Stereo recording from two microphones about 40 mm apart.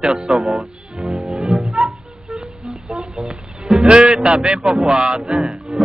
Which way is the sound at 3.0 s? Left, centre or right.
Right.